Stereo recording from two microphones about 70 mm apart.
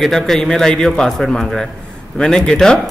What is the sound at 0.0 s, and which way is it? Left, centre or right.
A man's voice, centre.